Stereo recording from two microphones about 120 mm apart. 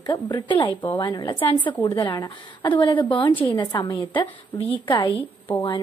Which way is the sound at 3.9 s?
45° left (ahead or behind).